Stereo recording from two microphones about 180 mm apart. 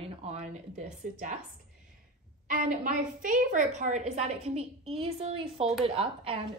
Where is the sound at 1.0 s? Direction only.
45° right (ahead or behind).